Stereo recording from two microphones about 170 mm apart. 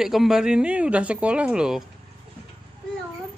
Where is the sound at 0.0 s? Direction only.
Centre (ahead or behind).